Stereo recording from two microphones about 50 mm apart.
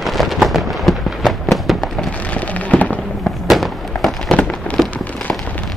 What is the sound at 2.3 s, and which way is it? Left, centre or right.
Fireworks, left.